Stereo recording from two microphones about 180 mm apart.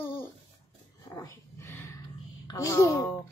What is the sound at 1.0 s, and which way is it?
Dog, 20° left (ahead or behind).